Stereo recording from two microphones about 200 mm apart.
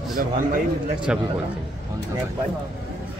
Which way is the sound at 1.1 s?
5° right (ahead or behind).